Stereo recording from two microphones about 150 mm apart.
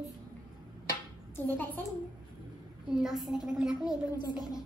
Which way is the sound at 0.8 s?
15° left (ahead or behind).